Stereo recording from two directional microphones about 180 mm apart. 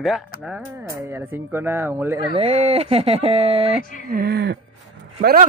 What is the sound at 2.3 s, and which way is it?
Speech, 35° right (ahead or behind).